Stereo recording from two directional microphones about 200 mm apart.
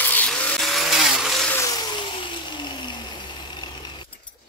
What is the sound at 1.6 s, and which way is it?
Vehicle, 20° left (ahead or behind).